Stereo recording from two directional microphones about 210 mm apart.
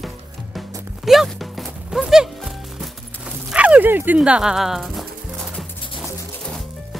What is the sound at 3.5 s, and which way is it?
Speech, 5° right (ahead or behind).